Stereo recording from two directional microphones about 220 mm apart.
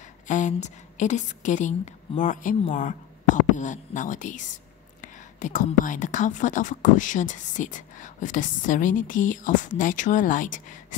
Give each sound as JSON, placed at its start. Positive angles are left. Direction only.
{"t": 0.3, "sound": "speech", "side_deg": 35}